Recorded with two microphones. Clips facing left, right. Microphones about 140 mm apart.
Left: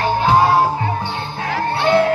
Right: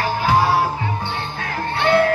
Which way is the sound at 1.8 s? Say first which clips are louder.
Left 1 dB; 20° left (ahead or behind).